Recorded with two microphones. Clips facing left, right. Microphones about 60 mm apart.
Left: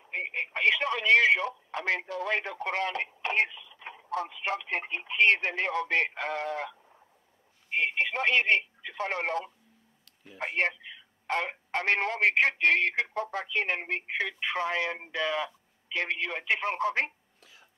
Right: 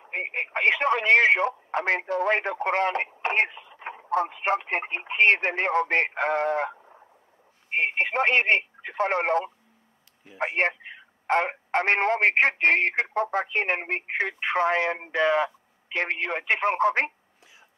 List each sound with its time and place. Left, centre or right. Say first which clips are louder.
0.0 s speech: right 3 dB; right